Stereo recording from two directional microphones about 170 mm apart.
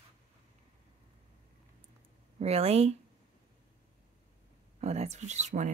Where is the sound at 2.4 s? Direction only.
35° right (ahead or behind).